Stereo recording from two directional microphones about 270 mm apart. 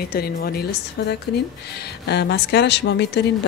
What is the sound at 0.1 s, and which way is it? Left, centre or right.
Speech, left.